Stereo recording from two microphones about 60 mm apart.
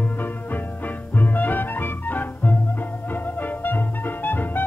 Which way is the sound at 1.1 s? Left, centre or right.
Left.